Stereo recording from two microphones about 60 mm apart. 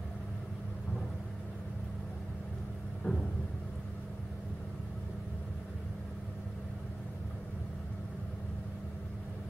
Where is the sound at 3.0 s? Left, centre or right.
Left.